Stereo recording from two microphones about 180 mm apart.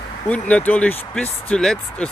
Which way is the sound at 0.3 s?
5° left (ahead or behind).